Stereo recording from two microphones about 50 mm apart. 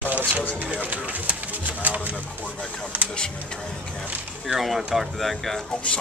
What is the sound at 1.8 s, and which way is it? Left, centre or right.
Pigeon, right.